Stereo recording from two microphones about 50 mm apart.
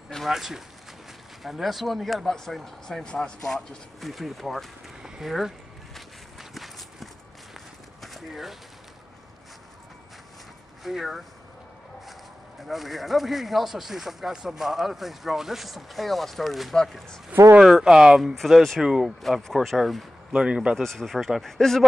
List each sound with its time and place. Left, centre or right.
0.3 s speech: centre
3.1 s speech: centre
3.4 s speech: centre
5.0 s a sound: centre
6.5 s run: centre
8.0 s a sound: centre
10.8 s speech: centre
17.3 s speech: right
17.8 s speech: centre
18.3 s speech: centre
18.8 s speech: centre
19.0 s speech: centre
20.3 s speech: centre
20.7 s speech: centre